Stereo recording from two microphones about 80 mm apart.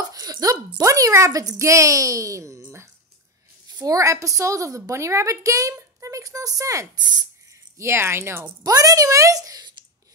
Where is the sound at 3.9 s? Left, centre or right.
Right.